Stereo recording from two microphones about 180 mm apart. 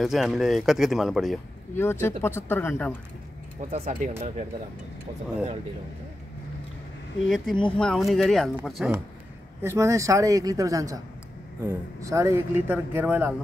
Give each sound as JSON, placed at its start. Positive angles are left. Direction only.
{"t": 0.0, "sound": "speech", "side_deg": 0}
{"t": 1.8, "sound": "speech", "side_deg": 10}
{"t": 3.7, "sound": "speech", "side_deg": -40}
{"t": 7.2, "sound": "speech", "side_deg": 0}
{"t": 9.6, "sound": "speech", "side_deg": -15}